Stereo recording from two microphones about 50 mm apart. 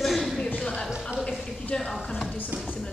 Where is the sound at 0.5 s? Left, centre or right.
Centre.